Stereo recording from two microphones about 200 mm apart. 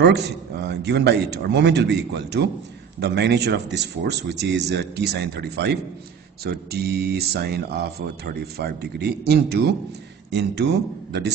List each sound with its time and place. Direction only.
0.0 s speech: 55° right (ahead or behind)